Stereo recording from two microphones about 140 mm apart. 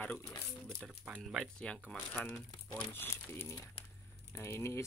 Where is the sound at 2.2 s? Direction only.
20° left (ahead or behind).